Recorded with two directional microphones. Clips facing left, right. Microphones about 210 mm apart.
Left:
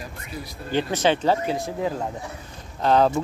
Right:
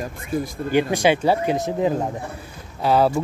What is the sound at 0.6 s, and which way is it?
Speech, 10° right (ahead or behind).